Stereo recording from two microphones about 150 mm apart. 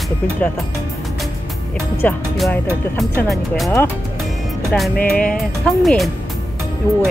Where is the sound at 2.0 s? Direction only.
10° left (ahead or behind).